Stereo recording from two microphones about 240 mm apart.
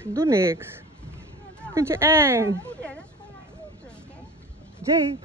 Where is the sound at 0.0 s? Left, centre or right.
Centre.